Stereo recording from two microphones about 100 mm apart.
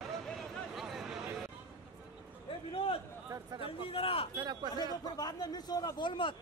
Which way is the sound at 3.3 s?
30° right (ahead or behind).